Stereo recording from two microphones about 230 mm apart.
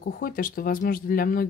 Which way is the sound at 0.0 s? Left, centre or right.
Left.